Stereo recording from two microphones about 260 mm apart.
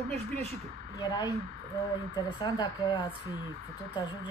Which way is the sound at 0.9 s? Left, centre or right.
Centre.